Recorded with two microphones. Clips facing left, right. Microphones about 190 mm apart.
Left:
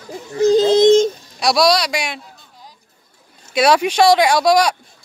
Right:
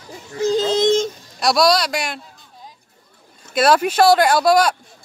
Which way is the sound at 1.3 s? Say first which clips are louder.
Even; centre (ahead or behind).